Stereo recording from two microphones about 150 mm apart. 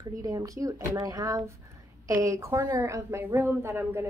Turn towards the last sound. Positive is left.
turn(degrees=-15)  # may be behind; listen again after turning